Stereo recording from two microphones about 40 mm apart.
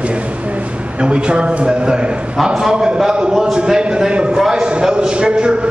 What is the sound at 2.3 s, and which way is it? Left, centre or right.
Speech, centre.